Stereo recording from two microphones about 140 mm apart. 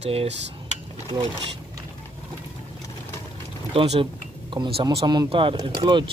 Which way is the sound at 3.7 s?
50° right (ahead or behind).